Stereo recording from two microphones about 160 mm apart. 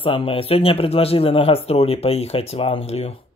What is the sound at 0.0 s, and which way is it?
Speech, 35° left (ahead or behind).